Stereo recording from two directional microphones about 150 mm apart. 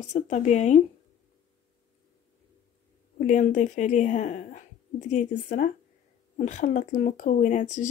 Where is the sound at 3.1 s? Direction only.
55° left (ahead or behind).